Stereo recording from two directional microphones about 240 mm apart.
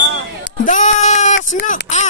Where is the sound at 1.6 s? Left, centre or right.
Left.